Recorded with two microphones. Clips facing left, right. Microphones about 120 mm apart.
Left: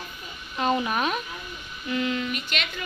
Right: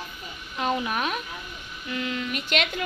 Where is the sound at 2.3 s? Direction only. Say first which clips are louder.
Right 5 dB; 70° right (ahead or behind).